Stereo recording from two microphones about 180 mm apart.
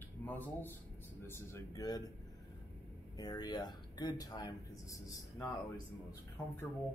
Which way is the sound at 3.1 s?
20° left (ahead or behind).